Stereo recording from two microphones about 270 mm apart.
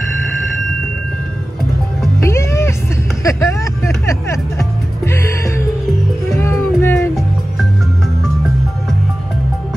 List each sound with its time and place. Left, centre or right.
2.2 s music: centre
3.3 s a sound: centre
5.0 s music: centre